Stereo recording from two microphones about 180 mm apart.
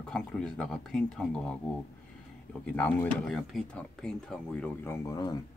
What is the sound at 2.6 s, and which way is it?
Speech, 10° left (ahead or behind).